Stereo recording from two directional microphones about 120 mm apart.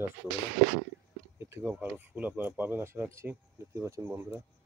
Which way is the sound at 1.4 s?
20° right (ahead or behind).